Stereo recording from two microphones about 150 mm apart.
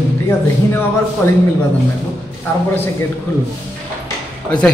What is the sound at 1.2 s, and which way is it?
Speech, 15° left (ahead or behind).